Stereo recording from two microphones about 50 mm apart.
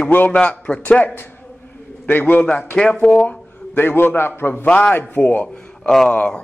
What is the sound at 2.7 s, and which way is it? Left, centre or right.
Speech, left.